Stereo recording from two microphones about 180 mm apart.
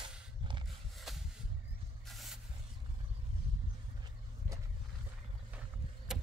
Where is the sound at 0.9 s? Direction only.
Centre (ahead or behind).